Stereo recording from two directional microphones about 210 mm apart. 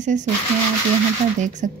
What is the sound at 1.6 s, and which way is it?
Speech, 35° right (ahead or behind).